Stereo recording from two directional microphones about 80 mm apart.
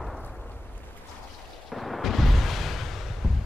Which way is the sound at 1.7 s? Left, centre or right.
Centre.